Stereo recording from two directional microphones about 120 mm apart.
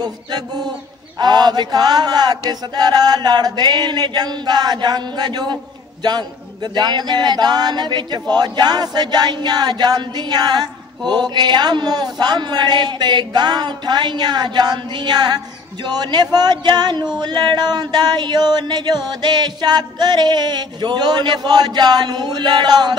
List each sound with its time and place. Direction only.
0.0 s a man's voice: 35° right (ahead or behind)